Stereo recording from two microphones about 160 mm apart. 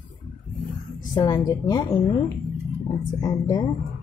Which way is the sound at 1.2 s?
25° left (ahead or behind).